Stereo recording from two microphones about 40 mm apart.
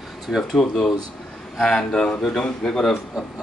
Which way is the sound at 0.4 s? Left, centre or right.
Centre.